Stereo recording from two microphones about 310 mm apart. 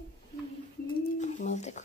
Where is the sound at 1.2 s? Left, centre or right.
Left.